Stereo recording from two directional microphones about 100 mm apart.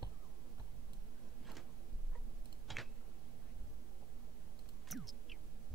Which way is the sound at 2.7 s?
Centre (ahead or behind).